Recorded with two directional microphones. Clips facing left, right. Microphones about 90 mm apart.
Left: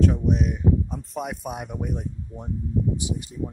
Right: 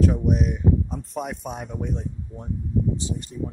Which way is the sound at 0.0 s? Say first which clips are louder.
Even; 5° right (ahead or behind).